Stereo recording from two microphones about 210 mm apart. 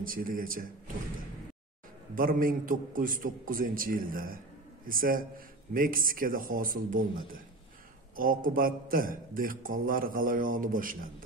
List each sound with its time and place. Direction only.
0.0 s a man's voice: 40° right (ahead or behind)
2.1 s a man's voice: 40° right (ahead or behind)
8.2 s a man's voice: 40° right (ahead or behind)